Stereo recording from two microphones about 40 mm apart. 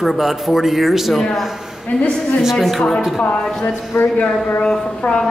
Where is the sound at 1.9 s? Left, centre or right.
Left.